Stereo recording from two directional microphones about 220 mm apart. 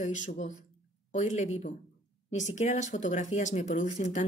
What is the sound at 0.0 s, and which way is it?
A woman's voice, 35° left (ahead or behind).